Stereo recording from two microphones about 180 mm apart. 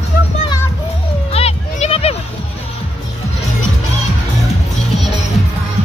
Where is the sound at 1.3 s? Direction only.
35° left (ahead or behind).